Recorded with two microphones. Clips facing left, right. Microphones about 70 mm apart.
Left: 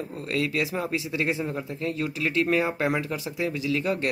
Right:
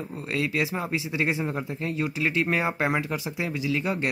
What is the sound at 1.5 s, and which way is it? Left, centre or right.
Speech, right.